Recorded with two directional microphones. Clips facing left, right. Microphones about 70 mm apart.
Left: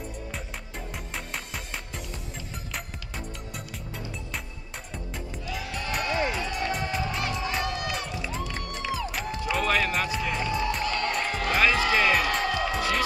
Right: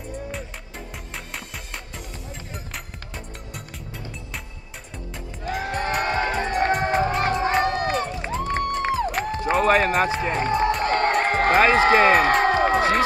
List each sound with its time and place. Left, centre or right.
0.3 s music: centre
5.4 s music: right